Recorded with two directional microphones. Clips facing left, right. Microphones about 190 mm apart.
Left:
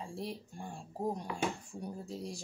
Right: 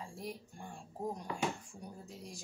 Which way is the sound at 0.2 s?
30° left (ahead or behind).